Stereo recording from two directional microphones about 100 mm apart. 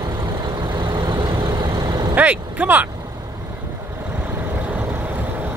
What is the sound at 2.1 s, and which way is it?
Speech, 15° right (ahead or behind).